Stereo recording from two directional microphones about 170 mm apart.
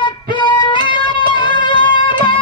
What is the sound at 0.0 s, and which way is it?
Music, 25° left (ahead or behind).